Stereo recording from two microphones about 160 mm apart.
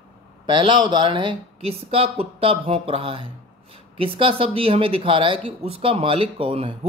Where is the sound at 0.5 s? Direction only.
30° right (ahead or behind).